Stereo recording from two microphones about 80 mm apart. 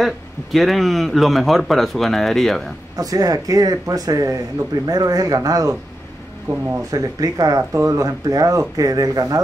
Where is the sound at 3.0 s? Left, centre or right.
Right.